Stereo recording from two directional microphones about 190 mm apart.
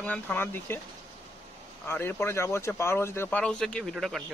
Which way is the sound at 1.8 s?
10° left (ahead or behind).